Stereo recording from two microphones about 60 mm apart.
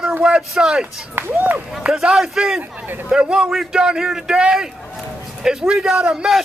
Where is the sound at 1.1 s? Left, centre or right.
Right.